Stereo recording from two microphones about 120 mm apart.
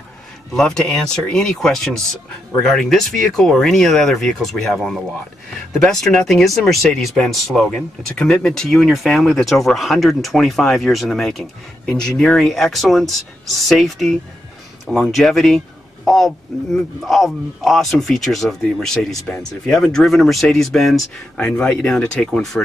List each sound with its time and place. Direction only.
0.5 s speech: 5° left (ahead or behind)